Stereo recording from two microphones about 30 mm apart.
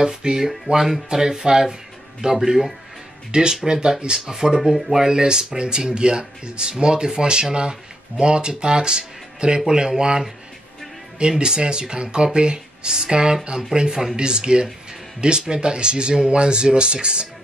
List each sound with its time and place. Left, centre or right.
0.0 s speech: right
0.7 s music: right
1.0 s speech: centre